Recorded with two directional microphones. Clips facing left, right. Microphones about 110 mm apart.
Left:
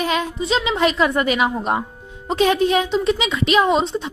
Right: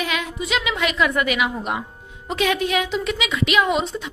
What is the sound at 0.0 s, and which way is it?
A woman's voice, 35° left (ahead or behind).